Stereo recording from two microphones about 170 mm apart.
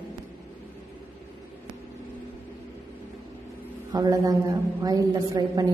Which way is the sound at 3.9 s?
20° right (ahead or behind).